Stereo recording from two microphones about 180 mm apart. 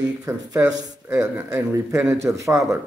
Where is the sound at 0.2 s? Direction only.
20° right (ahead or behind).